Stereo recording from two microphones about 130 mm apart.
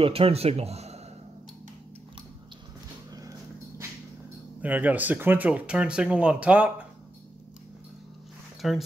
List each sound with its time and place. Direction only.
0.0 s speech: 45° right (ahead or behind)
3.1 s a sound: 25° right (ahead or behind)
4.6 s speech: 10° right (ahead or behind)
8.5 s speech: centre (ahead or behind)